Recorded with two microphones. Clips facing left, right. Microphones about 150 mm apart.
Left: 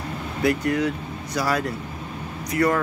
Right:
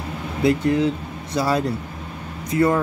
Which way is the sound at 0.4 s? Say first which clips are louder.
Right 3 dB; 25° right (ahead or behind).